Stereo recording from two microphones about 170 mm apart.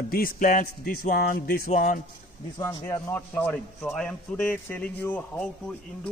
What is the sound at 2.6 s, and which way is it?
A man's voice, 15° left (ahead or behind).